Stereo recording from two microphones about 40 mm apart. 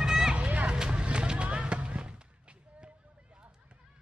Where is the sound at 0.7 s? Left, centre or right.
Right.